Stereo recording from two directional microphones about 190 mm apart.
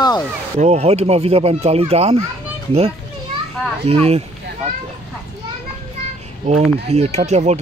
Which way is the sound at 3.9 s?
35° right (ahead or behind).